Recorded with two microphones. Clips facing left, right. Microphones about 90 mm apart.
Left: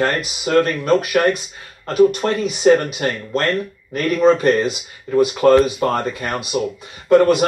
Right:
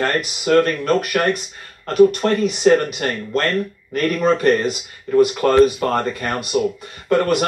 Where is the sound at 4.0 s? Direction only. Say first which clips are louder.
Left 3 dB; 5° left (ahead or behind).